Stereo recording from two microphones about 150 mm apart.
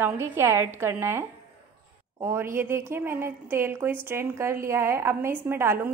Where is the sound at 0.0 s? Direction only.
15° right (ahead or behind).